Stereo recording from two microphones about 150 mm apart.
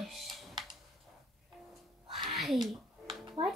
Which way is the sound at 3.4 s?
35° right (ahead or behind).